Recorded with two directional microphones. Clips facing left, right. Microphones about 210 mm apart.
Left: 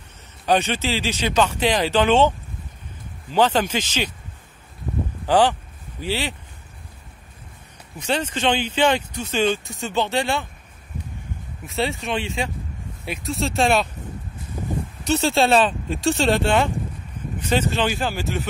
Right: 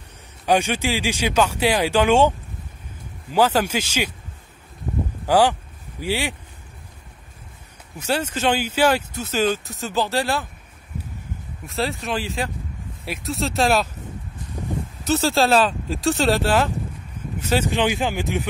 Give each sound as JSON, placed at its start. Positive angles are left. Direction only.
{"t": 0.5, "sound": "speech", "side_deg": -10}
{"t": 3.3, "sound": "speech", "side_deg": -5}
{"t": 5.2, "sound": "vehicle", "side_deg": -10}
{"t": 8.0, "sound": "speech", "side_deg": -5}
{"t": 11.6, "sound": "speech", "side_deg": 0}
{"t": 15.0, "sound": "speech", "side_deg": 0}